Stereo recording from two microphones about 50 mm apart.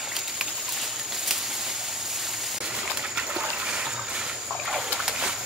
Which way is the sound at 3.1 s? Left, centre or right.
Right.